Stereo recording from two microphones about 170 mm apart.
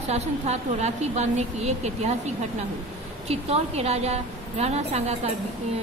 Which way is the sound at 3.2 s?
40° right (ahead or behind).